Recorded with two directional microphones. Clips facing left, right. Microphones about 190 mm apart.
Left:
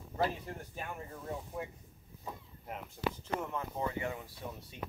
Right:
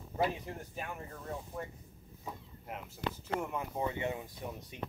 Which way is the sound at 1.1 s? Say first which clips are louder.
Left 1 dB; 10° left (ahead or behind).